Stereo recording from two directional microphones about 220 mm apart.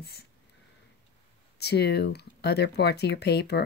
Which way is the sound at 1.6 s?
50° left (ahead or behind).